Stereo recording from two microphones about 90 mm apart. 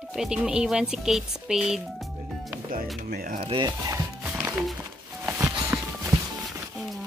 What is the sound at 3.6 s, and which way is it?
Speech, 45° right (ahead or behind).